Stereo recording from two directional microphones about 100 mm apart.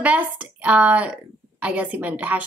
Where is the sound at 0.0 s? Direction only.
15° right (ahead or behind).